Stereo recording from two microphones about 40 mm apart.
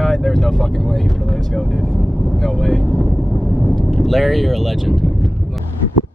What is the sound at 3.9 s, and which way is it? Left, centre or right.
Speech, centre.